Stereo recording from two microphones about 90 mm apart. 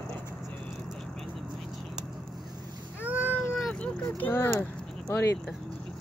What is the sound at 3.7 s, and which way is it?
Vehicle, 15° left (ahead or behind).